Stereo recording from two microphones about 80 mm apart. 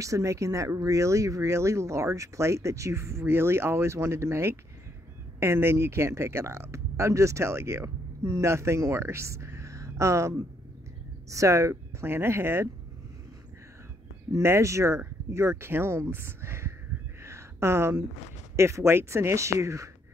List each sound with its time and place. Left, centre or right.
0.0 s speech: right
14.3 s speech: right
17.2 s a sound: right
18.6 s speech: right